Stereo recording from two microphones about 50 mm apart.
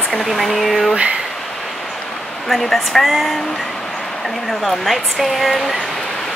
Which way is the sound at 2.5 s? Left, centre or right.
Centre.